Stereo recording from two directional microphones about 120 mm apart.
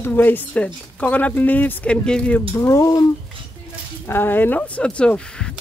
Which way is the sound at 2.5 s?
25° left (ahead or behind).